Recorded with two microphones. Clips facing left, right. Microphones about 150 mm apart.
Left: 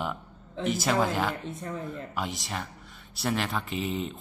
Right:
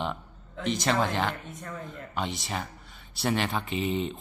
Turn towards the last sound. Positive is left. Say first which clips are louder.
# right 2 dB
turn(degrees=0)  # may be behind; listen again after turning